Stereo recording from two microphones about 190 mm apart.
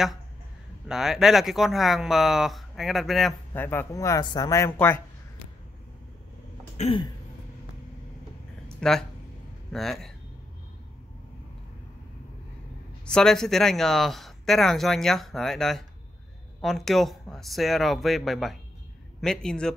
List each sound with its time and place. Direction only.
0.8 s speech: centre (ahead or behind)
6.8 s throat clearing: 30° left (ahead or behind)
8.8 s speech: centre (ahead or behind)
13.0 s speech: 5° left (ahead or behind)